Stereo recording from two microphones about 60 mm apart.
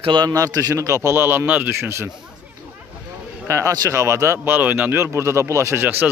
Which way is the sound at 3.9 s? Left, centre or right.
Right.